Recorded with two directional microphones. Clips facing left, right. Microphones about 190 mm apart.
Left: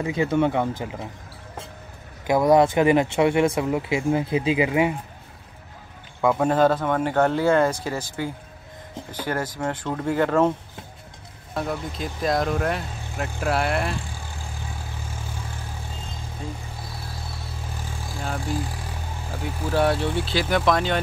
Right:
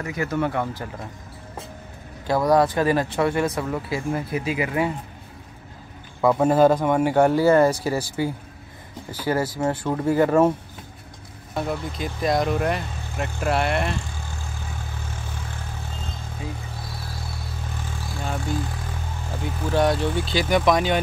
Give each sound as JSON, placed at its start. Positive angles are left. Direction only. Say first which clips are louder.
{"t": 0.0, "sound": "speech", "louder": "left 4 dB", "side_deg": 25}
{"t": 2.2, "sound": "speech", "louder": "left 2 dB", "side_deg": 20}
{"t": 6.2, "sound": "speech", "louder": "right 2 dB", "side_deg": -5}
{"t": 11.5, "sound": "speech", "louder": "right 1 dB", "side_deg": 0}
{"t": 18.2, "sound": "vehicle", "louder": "right 1 dB", "side_deg": 0}
{"t": 19.4, "sound": "speech", "louder": "right 1 dB", "side_deg": 5}
{"t": 20.6, "sound": "speech", "louder": "right 2 dB", "side_deg": -10}